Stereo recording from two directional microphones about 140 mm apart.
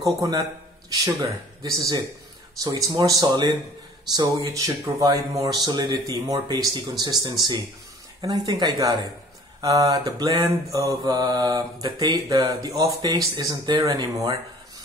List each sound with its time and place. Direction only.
0.0 s a man's voice: 25° right (ahead or behind)
2.6 s mantra: 25° right (ahead or behind)